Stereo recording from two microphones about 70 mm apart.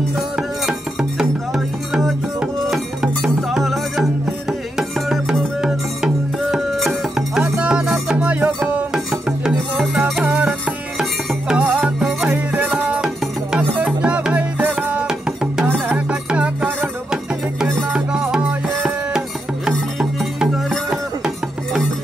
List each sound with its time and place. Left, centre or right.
0.4 s music: centre
8.2 s music: right
8.9 s music: centre
10.2 s music: centre
11.6 s music: right
13.0 s music: centre